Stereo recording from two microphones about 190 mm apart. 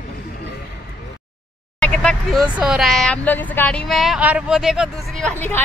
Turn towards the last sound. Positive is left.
turn(degrees=10)  # may be behind; listen again after turning